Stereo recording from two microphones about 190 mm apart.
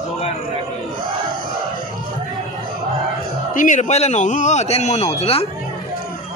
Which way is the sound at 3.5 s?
45° left (ahead or behind).